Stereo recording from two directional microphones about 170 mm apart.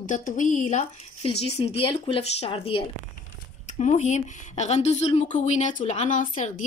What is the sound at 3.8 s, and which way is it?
A woman's voice, 45° left (ahead or behind).